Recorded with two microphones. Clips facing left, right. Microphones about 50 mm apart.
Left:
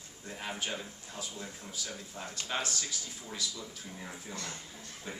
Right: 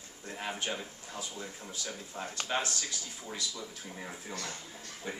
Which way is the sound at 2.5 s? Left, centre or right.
Centre.